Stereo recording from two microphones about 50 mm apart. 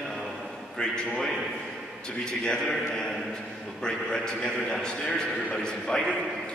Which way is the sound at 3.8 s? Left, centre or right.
Centre.